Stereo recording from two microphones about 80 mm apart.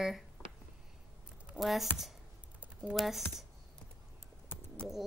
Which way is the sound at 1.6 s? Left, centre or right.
Centre.